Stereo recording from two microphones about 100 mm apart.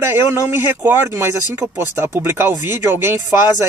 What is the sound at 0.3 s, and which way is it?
Speech, 25° right (ahead or behind).